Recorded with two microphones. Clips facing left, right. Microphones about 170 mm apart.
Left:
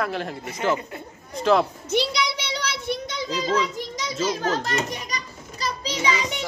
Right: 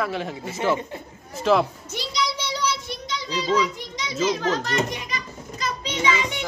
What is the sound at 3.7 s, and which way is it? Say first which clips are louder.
Children playing: left 3 dB; 45° left (ahead or behind).